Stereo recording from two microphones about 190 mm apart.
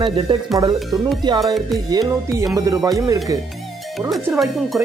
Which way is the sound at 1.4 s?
Centre (ahead or behind).